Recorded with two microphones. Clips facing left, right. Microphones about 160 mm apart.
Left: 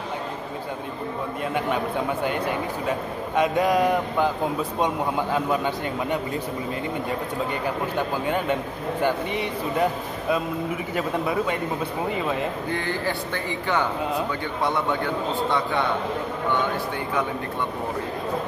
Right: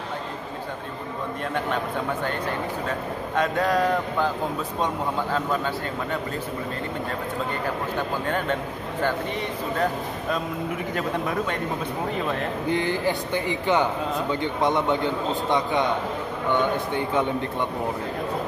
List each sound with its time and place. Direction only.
2.2 s speech: 10° left (ahead or behind)
9.0 s speech: 10° left (ahead or behind)
11.0 s speech: 10° left (ahead or behind)
12.6 s a man's voice: 15° right (ahead or behind)
16.9 s a man's voice: 25° right (ahead or behind)